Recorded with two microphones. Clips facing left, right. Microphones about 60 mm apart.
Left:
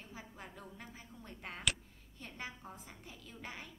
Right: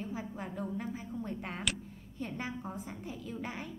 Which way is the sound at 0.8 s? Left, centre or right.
Centre.